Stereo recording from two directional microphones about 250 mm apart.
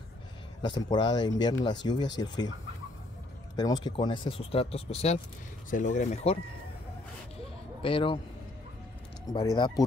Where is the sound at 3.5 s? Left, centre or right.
Centre.